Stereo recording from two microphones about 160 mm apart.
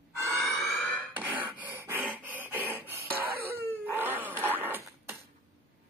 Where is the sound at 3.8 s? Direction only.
10° right (ahead or behind).